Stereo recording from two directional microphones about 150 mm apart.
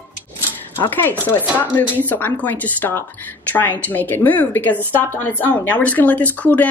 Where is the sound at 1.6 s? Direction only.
10° left (ahead or behind).